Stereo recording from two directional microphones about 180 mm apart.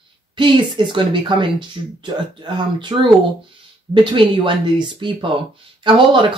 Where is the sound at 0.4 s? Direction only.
25° right (ahead or behind).